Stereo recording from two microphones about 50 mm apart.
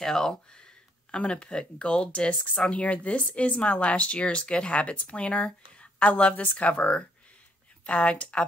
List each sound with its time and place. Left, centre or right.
0.0 s speech: centre